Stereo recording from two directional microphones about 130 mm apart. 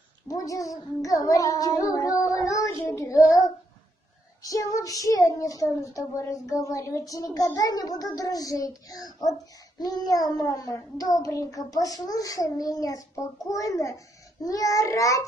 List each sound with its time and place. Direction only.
0.3 s child singing: 25° left (ahead or behind)